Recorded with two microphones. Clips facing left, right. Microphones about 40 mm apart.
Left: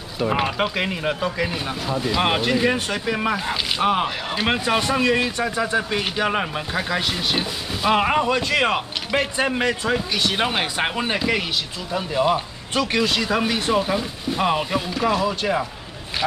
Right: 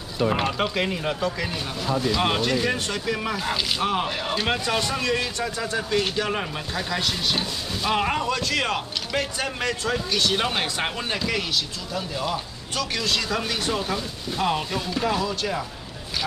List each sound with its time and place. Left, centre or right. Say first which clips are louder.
0.2 s speech: left 2 dB; centre
15.0 s speech: left 3 dB; centre
15.2 s speech: left 5 dB; left